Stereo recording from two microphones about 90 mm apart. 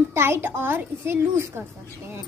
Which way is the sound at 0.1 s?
30° right (ahead or behind).